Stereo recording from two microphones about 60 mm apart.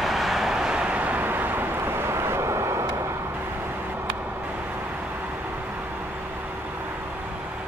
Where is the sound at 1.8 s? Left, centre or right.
Right.